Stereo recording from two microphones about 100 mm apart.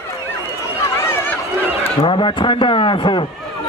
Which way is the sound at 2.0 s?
60° left (ahead or behind).